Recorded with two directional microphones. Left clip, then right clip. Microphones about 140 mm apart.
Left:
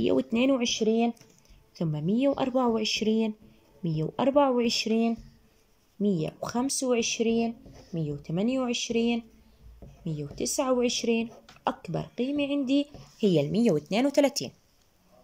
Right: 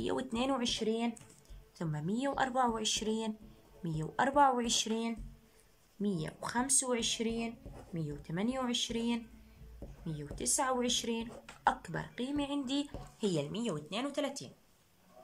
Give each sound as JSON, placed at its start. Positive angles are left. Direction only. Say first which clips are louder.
{"t": 0.0, "sound": "speech", "louder": "left 10 dB", "side_deg": 20}
{"t": 13.5, "sound": "speech", "louder": "left 13 dB", "side_deg": 40}